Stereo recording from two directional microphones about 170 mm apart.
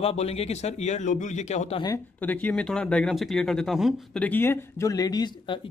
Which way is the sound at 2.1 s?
10° left (ahead or behind).